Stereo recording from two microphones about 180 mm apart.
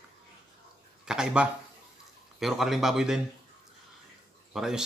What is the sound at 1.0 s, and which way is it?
A man's voice, 5° right (ahead or behind).